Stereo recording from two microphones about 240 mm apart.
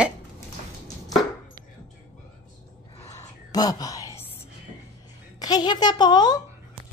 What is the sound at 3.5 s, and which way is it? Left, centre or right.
Whispering, centre.